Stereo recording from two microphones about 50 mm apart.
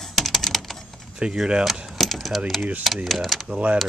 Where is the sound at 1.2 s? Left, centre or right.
Centre.